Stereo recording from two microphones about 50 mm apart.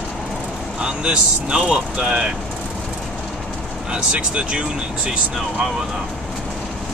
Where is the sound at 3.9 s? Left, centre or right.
Centre.